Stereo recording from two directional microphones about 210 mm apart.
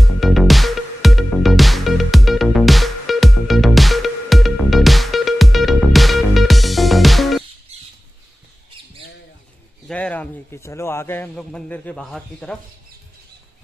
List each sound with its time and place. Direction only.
0.0 s music: centre (ahead or behind)
7.7 s squawk: 30° right (ahead or behind)
9.8 s a man's voice: 5° left (ahead or behind)